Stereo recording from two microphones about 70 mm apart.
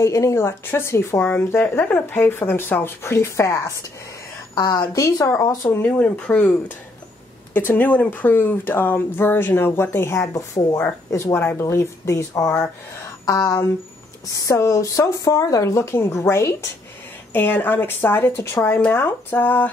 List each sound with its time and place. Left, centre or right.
0.0 s speech: left
4.6 s a woman's voice: left
5.4 s speech: left
5.8 s speech: left
7.5 s speech: left
10.2 s speech: left
11.3 s speech: left
13.2 s speech: left
17.3 s speech: left